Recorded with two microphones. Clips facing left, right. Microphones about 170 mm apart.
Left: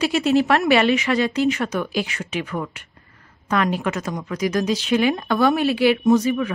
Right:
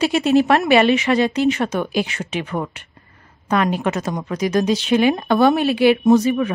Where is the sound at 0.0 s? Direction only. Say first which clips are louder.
Right 3 dB; 20° right (ahead or behind).